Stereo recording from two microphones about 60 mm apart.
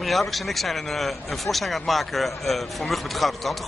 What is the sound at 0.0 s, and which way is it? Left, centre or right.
A man's voice, centre.